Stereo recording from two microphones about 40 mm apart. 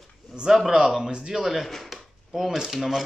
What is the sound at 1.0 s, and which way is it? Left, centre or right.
Speech, centre.